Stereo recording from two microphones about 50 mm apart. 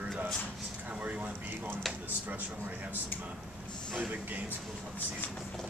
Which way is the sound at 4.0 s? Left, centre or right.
Right.